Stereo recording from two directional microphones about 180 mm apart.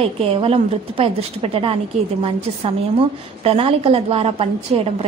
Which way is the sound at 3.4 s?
30° right (ahead or behind).